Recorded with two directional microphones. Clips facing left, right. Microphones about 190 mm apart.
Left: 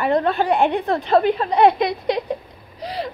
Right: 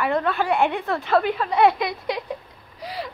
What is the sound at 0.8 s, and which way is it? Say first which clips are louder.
A child's voice: left 4 dB; 20° left (ahead or behind).